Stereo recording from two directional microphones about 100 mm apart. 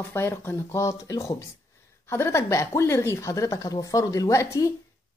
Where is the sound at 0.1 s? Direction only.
25° left (ahead or behind).